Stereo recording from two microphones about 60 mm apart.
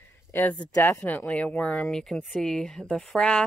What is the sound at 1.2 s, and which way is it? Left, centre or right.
Speech, centre.